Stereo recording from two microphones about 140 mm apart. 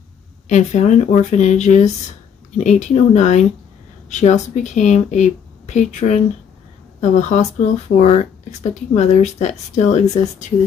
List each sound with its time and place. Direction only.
0.5 s speech: 55° left (ahead or behind)